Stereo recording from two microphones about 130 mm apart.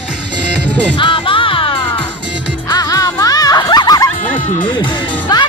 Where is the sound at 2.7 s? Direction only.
30° left (ahead or behind).